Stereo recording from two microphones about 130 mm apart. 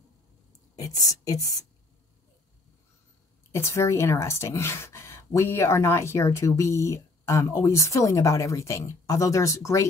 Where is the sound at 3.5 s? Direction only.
20° left (ahead or behind).